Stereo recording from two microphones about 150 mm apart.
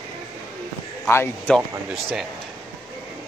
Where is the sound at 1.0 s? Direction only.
15° left (ahead or behind).